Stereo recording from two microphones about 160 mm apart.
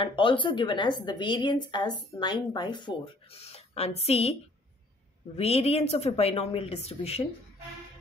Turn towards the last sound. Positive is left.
turn(degrees=40)  # may be behind; listen again after turning